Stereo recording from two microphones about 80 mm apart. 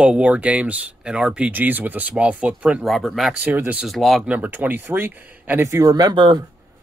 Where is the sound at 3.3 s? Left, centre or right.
Right.